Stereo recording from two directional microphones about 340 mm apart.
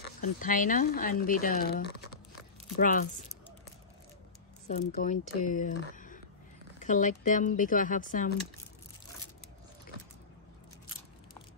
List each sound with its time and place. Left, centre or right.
0.2 s speech: left
4.6 s speech: left